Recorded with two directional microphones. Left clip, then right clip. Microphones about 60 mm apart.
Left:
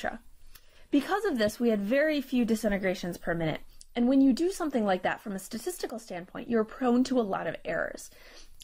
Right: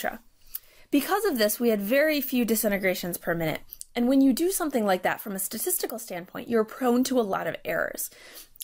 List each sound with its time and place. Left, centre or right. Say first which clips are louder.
0.8 s speech: right 3 dB; right